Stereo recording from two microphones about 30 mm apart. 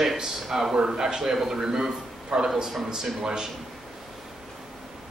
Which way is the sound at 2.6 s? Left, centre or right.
Centre.